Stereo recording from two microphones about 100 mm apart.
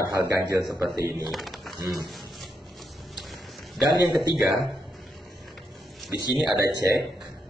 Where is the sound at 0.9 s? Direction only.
Centre (ahead or behind).